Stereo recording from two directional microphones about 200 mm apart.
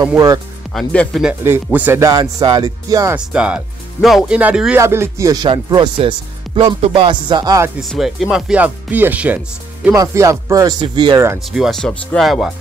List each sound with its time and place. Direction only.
0.7 s speech: centre (ahead or behind)
1.4 s speech: 10° right (ahead or behind)
3.3 s speech: 5° right (ahead or behind)
7.9 s speech: centre (ahead or behind); by 11.3 s 20° right (ahead or behind)
11.5 s speech: centre (ahead or behind)